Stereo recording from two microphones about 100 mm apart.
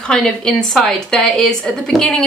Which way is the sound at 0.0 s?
5° left (ahead or behind).